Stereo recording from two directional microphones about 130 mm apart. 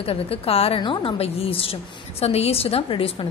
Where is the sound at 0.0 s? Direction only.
50° left (ahead or behind).